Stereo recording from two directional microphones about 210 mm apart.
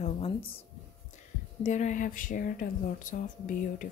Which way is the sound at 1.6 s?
35° left (ahead or behind).